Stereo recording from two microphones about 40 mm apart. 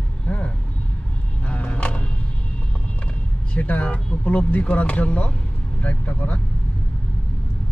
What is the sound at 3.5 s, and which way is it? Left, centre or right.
Speech, left.